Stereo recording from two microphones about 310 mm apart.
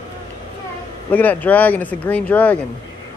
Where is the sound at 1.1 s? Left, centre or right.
Centre.